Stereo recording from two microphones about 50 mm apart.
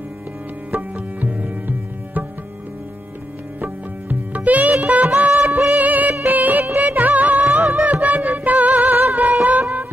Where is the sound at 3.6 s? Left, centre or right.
Right.